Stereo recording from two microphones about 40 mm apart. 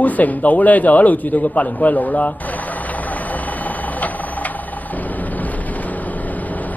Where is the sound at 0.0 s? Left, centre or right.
Left.